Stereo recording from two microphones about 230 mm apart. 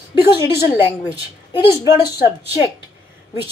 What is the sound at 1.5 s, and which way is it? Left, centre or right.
Speech, centre.